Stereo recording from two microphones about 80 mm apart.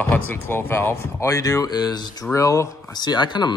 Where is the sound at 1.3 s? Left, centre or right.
Left.